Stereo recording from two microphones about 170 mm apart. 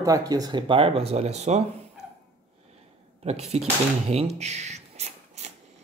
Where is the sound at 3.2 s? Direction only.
40° right (ahead or behind).